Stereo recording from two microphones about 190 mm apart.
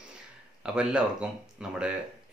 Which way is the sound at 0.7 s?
5° right (ahead or behind).